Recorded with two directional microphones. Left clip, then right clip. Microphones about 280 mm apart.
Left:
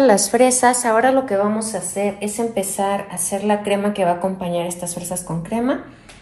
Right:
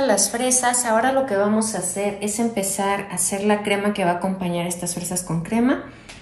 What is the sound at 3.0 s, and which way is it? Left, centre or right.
A woman's voice, centre.